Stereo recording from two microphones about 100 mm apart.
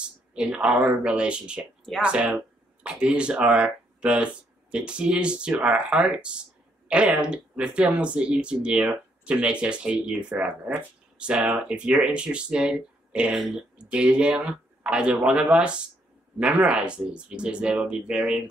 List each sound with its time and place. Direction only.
0.3 s speech: 10° right (ahead or behind)